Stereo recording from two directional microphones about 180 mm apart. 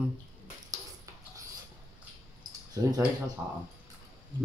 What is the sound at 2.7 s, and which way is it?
Speech, 20° right (ahead or behind).